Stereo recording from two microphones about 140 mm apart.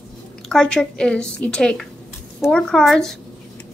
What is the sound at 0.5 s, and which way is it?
A woman's voice, 5° left (ahead or behind).